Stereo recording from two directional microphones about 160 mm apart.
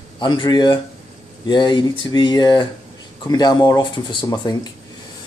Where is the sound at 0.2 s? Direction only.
30° left (ahead or behind).